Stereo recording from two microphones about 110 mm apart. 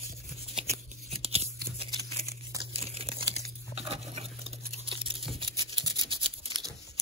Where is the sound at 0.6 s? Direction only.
65° right (ahead or behind).